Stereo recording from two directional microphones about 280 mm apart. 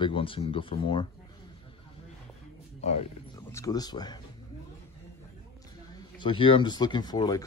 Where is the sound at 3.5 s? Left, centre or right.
Centre.